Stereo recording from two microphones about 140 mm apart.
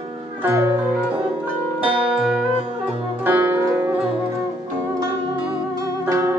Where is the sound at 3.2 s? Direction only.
15° right (ahead or behind).